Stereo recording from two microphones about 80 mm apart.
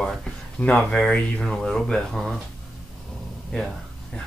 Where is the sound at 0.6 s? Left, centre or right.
Left; by 2.4 s centre.